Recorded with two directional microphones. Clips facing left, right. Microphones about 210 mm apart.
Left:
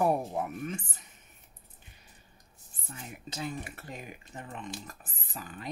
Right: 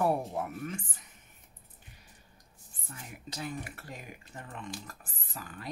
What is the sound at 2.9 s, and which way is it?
Speech, 25° left (ahead or behind).